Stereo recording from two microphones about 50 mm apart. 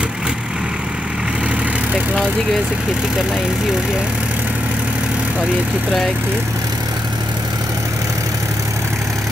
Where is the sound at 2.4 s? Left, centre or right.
Centre.